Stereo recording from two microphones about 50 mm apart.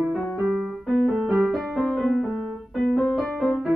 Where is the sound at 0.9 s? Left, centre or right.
Centre.